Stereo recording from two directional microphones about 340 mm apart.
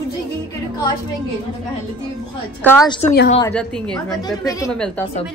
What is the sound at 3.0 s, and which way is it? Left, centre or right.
Speech, left.